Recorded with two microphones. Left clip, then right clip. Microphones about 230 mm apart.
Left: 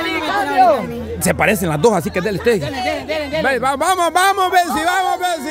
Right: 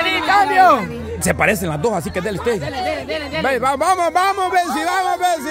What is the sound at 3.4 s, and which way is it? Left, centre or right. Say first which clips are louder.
Speech: right 1 dB; centre.